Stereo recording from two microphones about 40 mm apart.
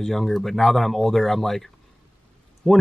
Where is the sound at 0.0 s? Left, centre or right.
Centre.